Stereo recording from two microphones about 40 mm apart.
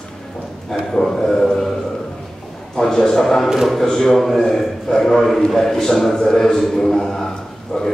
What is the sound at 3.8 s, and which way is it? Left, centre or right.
Speech, centre.